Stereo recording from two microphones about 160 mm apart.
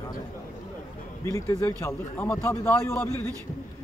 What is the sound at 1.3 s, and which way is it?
A man's voice, 20° left (ahead or behind).